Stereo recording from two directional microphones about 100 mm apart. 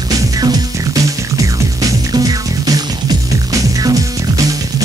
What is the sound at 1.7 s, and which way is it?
Music, 35° right (ahead or behind).